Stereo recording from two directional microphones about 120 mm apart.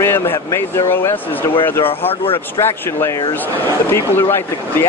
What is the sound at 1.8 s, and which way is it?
Speech, 50° left (ahead or behind).